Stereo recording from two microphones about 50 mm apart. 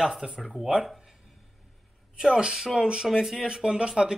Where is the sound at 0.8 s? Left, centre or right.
Centre.